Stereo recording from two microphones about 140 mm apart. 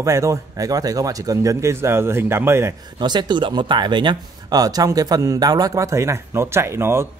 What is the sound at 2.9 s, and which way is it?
Speech, 30° right (ahead or behind).